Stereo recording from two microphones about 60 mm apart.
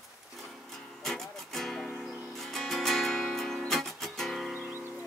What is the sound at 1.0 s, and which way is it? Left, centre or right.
Music, centre.